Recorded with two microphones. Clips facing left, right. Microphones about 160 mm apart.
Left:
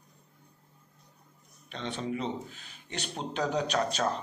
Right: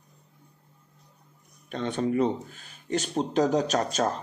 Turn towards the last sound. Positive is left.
turn(degrees=-40)  # may be behind; listen again after turning